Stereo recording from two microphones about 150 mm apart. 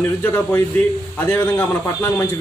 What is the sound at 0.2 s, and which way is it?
A man's voice, 15° left (ahead or behind).